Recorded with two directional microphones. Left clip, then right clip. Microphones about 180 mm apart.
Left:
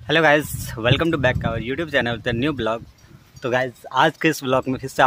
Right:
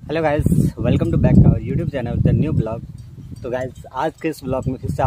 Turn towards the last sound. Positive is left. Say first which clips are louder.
# left 3 dB
turn(degrees=5)  # may be behind; listen again after turning